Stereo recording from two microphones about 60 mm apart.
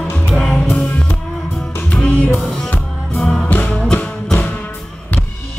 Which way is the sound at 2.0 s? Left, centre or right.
Centre.